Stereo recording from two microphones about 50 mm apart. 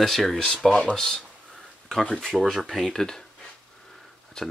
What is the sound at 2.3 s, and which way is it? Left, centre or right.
Speech, centre.